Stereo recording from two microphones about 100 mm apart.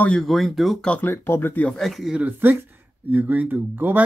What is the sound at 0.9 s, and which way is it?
Speech, 20° left (ahead or behind).